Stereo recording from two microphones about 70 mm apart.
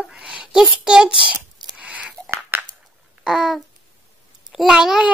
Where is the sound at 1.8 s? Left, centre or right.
Centre.